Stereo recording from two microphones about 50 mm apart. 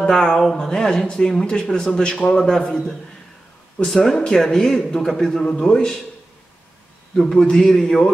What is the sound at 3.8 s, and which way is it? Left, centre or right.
A man's voice, centre.